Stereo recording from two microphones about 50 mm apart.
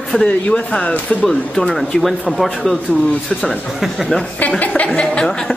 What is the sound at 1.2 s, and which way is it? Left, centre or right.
Speech, centre.